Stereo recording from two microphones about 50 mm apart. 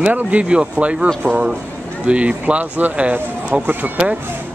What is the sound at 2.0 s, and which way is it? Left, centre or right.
Speech, right.